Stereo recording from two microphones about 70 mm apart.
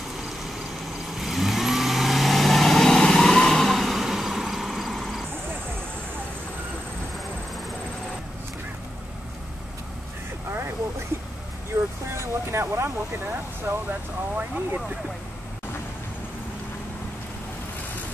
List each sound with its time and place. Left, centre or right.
1.1 s vehicle: centre
11.7 s vehicle: right
12.1 s vehicle: right
14.3 s vehicle: centre